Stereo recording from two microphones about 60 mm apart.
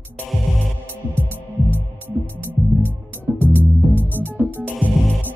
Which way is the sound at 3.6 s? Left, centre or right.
Left.